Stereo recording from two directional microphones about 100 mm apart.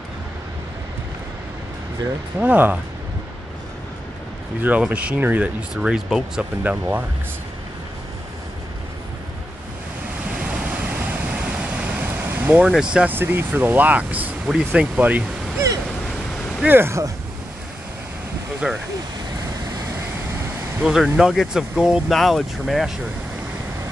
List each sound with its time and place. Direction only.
2.3 s speech: 15° right (ahead or behind)
4.6 s speech: 15° right (ahead or behind)
6.6 s speech: 15° right (ahead or behind)
10.2 s waves: 10° right (ahead or behind)
12.9 s speech: 15° right (ahead or behind)
16.6 s speech: 20° right (ahead or behind)
18.6 s speech: 10° right (ahead or behind)
20.8 s speech: 5° right (ahead or behind)